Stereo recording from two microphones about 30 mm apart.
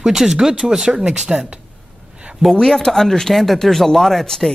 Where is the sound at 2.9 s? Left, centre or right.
Centre.